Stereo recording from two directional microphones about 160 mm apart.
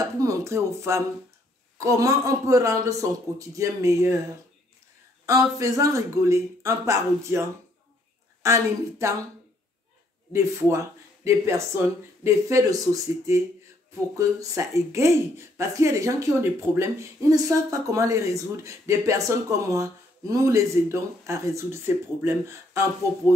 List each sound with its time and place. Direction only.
0.0 s speech: 20° right (ahead or behind)
5.2 s speech: 20° right (ahead or behind)
10.3 s speech: 15° right (ahead or behind)